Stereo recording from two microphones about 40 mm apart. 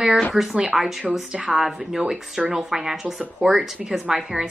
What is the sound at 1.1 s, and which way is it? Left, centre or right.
Speech, right.